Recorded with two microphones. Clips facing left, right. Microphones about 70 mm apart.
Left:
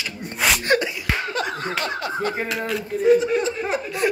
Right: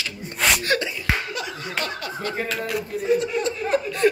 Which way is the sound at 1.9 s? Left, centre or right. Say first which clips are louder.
Left 4 dB; left.